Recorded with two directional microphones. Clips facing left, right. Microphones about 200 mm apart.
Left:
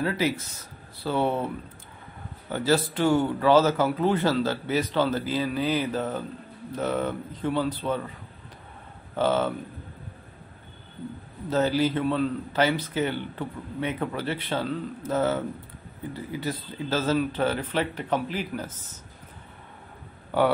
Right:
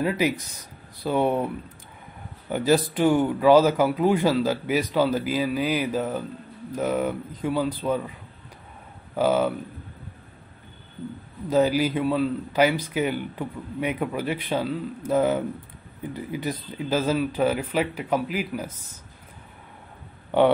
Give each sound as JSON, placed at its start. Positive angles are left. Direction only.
{"t": 0.0, "sound": "speech", "side_deg": -15}
{"t": 2.5, "sound": "a man's voice", "side_deg": -15}
{"t": 9.1, "sound": "a man's voice", "side_deg": -10}
{"t": 11.4, "sound": "a man's voice", "side_deg": -10}
{"t": 20.2, "sound": "speech", "side_deg": -20}